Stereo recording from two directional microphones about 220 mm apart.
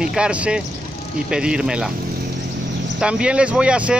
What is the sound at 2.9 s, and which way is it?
Speech, 5° right (ahead or behind).